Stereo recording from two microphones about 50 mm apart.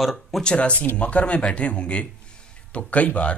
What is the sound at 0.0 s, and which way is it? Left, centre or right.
Speech, centre.